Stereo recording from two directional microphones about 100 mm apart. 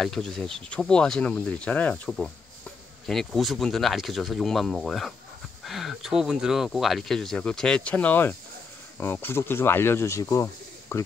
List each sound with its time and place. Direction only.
0.0 s speech: 5° left (ahead or behind)
2.0 s speech: centre (ahead or behind); by 10.2 s 25° left (ahead or behind)
10.3 s a sound: 30° left (ahead or behind)